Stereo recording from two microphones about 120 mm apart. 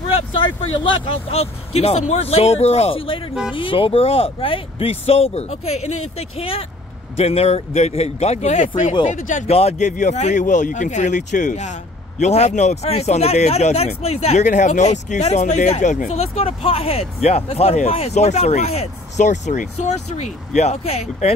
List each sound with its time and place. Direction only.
0.1 s speech: 50° left (ahead or behind); by 8.9 s 75° left (ahead or behind)
9.0 s speech: 90° left
12.2 s speech: 70° left (ahead or behind)